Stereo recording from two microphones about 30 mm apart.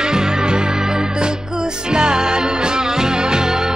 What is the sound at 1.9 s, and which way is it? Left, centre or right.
Music, right.